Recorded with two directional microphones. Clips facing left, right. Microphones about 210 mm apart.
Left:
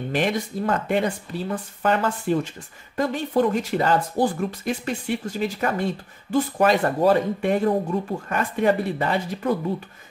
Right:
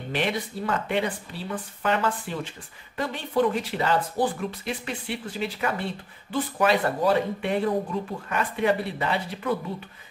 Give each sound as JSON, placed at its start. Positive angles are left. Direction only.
{"t": 0.1, "sound": "speech", "side_deg": 45}